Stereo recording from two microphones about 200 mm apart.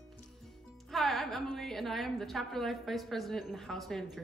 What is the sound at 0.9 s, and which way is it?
A woman's voice, centre (ahead or behind).